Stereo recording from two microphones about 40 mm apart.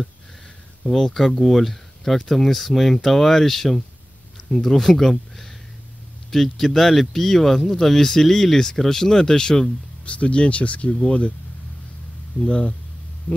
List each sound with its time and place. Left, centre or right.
0.8 s speech: centre
10.0 s speech: left
10.9 s speech: centre
12.4 s speech: left